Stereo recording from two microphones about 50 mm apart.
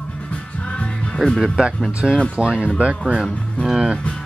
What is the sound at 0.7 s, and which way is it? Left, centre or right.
Music, left.